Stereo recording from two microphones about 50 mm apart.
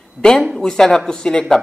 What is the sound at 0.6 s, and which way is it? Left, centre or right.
Speech, centre.